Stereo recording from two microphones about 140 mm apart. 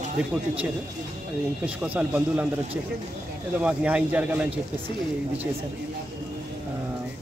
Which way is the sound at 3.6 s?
10° right (ahead or behind).